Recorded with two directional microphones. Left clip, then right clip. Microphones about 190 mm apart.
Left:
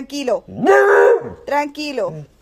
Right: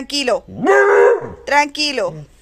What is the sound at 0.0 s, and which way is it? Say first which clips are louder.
Speech: right 2 dB; 5° left (ahead or behind).